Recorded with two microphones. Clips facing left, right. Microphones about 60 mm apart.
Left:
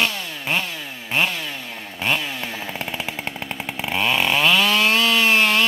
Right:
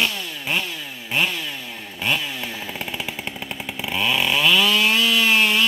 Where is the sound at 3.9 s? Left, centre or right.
Left.